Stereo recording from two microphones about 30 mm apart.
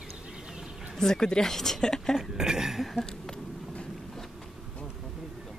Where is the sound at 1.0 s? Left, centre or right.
Left.